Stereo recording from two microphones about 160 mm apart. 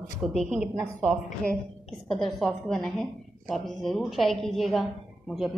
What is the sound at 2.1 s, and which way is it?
A woman's voice, 5° left (ahead or behind).